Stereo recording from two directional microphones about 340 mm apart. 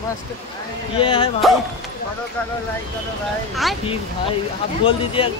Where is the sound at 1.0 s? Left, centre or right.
Centre.